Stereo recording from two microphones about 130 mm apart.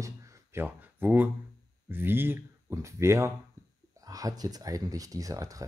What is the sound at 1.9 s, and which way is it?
Speech, 15° right (ahead or behind).